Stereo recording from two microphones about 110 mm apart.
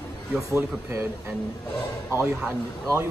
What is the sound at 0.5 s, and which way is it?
Speech, 25° right (ahead or behind).